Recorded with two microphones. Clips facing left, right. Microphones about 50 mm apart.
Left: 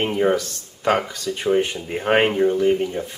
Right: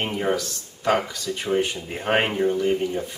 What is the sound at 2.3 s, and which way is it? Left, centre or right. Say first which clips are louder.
Speech: left 4 dB; centre.